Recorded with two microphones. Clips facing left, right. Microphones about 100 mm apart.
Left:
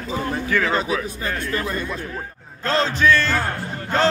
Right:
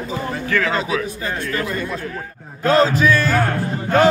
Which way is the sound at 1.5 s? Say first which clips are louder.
Right 2 dB; 30° left (ahead or behind).